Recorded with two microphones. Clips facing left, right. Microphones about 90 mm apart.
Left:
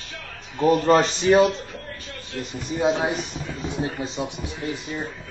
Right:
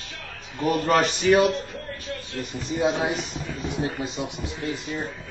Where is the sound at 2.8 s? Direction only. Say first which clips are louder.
Left 3 dB; 25° left (ahead or behind).